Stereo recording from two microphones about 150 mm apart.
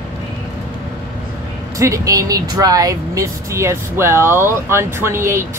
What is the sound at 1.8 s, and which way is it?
Speech, 20° right (ahead or behind).